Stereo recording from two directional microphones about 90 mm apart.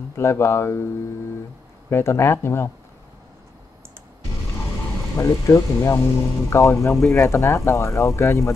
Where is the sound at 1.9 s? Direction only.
30° left (ahead or behind).